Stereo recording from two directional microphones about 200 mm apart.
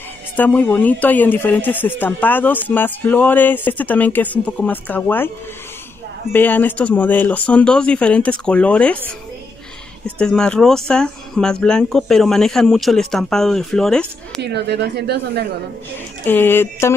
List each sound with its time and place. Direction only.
0.4 s speech: 10° left (ahead or behind)
6.3 s speech: 10° left (ahead or behind)
10.0 s speech: 5° left (ahead or behind)
14.4 s speech: 55° right (ahead or behind)
16.3 s speech: 10° left (ahead or behind)